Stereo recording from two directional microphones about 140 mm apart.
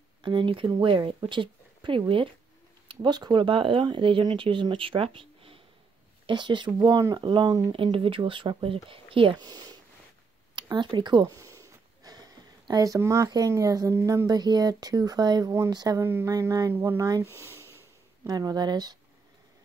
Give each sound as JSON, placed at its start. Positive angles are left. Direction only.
{"t": 0.2, "sound": "speech", "side_deg": -35}
{"t": 7.7, "sound": "speech", "side_deg": -40}
{"t": 9.5, "sound": "speech", "side_deg": -25}
{"t": 11.3, "sound": "speech", "side_deg": -20}
{"t": 16.0, "sound": "speech", "side_deg": -15}
{"t": 18.2, "sound": "speech", "side_deg": -30}